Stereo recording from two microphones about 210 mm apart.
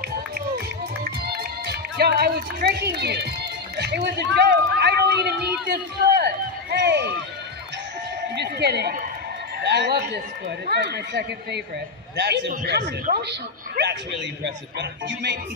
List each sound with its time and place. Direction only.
1.0 s music: 50° right (ahead or behind)
8.4 s a man's voice: 50° right (ahead or behind)